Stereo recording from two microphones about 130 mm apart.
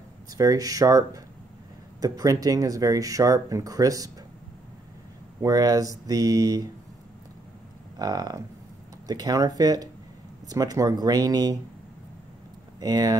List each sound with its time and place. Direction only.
0.3 s speech: 25° right (ahead or behind)
5.4 s speech: 30° right (ahead or behind)
8.0 s speech: 30° right (ahead or behind)
12.8 s speech: 30° right (ahead or behind)